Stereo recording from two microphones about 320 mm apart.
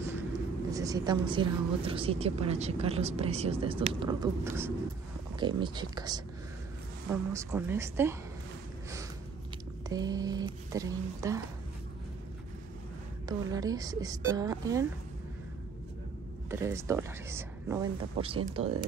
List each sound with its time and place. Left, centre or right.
0.7 s a woman's voice: centre
9.8 s a woman's voice: centre
13.3 s a woman's voice: centre
16.4 s a woman's voice: centre